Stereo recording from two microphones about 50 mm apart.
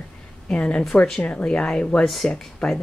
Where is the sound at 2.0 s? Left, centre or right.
Centre.